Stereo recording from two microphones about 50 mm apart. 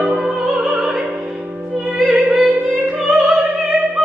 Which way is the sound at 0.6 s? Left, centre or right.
Right.